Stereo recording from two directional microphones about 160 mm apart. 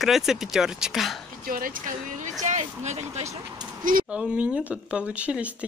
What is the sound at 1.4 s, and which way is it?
Speech, 60° right (ahead or behind).